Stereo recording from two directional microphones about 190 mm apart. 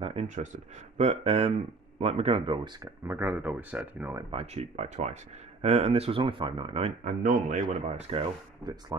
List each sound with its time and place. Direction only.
0.0 s speech: 30° right (ahead or behind)
3.1 s speech: 10° right (ahead or behind)
4.3 s speech: 30° right (ahead or behind)
7.1 s speech: 40° right (ahead or behind)
8.1 s speech: 25° right (ahead or behind)